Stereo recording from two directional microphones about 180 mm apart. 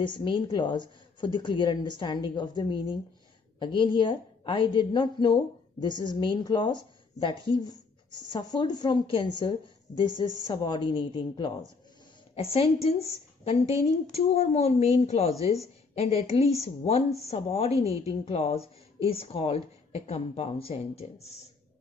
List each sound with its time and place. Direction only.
0.1 s a woman's voice: 25° left (ahead or behind)